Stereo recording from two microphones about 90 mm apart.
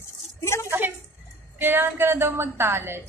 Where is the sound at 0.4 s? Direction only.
30° left (ahead or behind).